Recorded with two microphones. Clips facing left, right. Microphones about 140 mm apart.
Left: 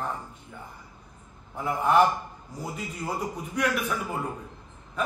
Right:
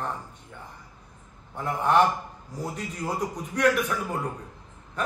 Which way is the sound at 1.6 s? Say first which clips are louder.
Even; 5° left (ahead or behind).